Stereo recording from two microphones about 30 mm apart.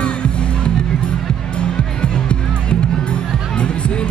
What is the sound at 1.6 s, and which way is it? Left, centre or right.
Music, left.